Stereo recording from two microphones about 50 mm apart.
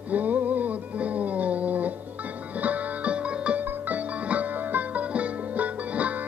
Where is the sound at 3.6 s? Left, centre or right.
Right.